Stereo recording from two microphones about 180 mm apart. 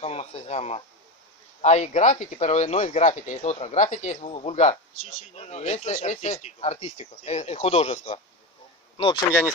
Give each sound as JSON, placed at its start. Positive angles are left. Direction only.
{"t": 0.0, "sound": "speech", "side_deg": 35}